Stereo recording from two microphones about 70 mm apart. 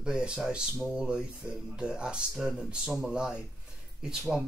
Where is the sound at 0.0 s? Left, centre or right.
Centre.